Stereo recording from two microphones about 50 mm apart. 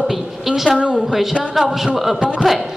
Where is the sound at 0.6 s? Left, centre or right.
Right.